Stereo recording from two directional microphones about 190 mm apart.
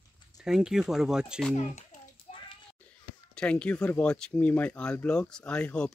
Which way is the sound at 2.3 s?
30° left (ahead or behind).